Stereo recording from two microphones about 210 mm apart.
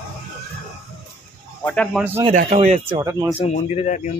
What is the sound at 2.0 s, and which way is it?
Speech, 10° right (ahead or behind).